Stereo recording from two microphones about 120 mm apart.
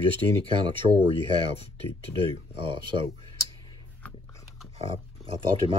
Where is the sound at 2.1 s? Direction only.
45° right (ahead or behind).